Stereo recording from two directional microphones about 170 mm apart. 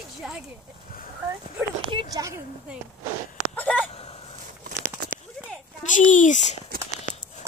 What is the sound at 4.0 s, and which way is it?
Fowl, 35° left (ahead or behind).